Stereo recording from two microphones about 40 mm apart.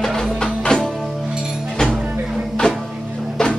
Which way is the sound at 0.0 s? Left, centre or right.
Centre.